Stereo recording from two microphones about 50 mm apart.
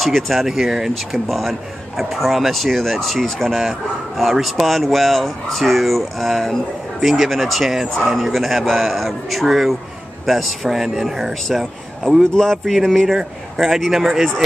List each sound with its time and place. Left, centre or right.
0.0 s speech: centre
7.0 s speech: centre
11.4 s speech: centre
13.0 s speech: centre